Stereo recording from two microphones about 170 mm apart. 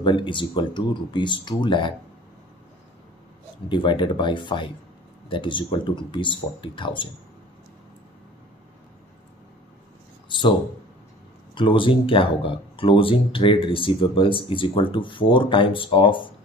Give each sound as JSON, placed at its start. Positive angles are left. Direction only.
{"t": 0.0, "sound": "speech", "side_deg": 30}
{"t": 3.6, "sound": "speech", "side_deg": 30}
{"t": 10.2, "sound": "a sound", "side_deg": 30}
{"t": 11.5, "sound": "speech", "side_deg": 30}